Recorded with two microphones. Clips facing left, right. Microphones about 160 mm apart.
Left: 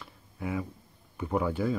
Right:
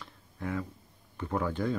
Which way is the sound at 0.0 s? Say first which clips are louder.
Left 1 dB; 10° left (ahead or behind).